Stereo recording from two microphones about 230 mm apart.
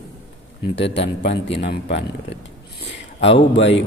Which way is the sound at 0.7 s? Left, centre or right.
Left.